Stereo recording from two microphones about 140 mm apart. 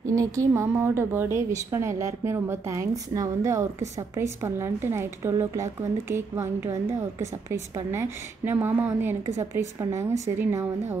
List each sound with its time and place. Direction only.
0.0 s a woman's voice: 20° right (ahead or behind)